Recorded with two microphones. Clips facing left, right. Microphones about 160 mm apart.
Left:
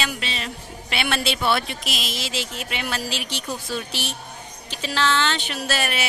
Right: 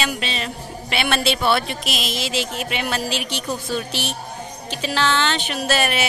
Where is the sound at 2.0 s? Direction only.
15° right (ahead or behind).